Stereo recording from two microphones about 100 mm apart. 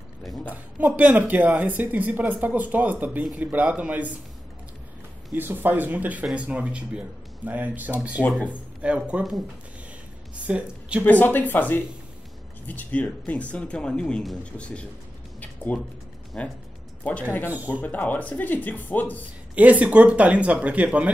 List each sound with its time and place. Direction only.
0.5 s speech: 15° right (ahead or behind)
5.3 s speech: 20° right (ahead or behind)
10.3 s a woman's voice: 10° right (ahead or behind)
11.1 s speech: 20° left (ahead or behind)
15.4 s music: 15° left (ahead or behind)
16.3 s speech: 10° left (ahead or behind)
19.5 s speech: 15° right (ahead or behind)